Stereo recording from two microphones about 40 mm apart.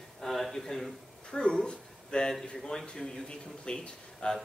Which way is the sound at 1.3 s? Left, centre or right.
Left.